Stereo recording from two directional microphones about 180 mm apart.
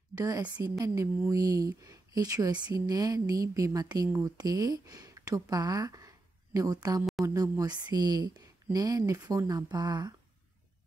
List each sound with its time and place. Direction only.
0.1 s speech: 20° right (ahead or behind)
7.0 s a sound: centre (ahead or behind)
7.2 s speech: 20° right (ahead or behind)